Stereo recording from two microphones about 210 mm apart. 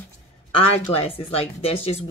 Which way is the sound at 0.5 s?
30° left (ahead or behind).